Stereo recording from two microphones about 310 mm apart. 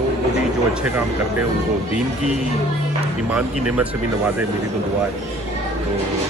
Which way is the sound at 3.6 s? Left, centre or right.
Centre.